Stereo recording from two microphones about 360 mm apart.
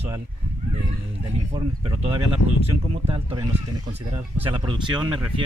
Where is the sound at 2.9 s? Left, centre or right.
Centre.